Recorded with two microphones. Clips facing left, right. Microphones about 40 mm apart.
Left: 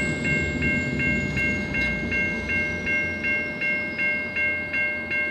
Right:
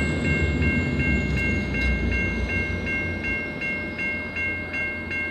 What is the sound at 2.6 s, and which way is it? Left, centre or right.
Train, right.